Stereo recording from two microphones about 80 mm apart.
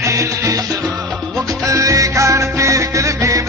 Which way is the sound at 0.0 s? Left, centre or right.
Right.